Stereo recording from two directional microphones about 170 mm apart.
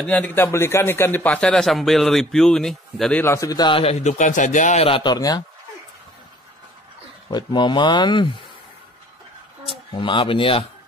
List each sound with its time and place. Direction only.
0.0 s a man's voice: 10° left (ahead or behind); by 4.8 s 45° left (ahead or behind)
4.8 s speech: 30° left (ahead or behind)
7.2 s speech: 25° left (ahead or behind)
9.7 s speech: 30° left (ahead or behind)